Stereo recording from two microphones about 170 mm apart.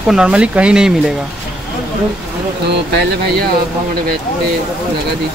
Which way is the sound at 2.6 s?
75° right (ahead or behind).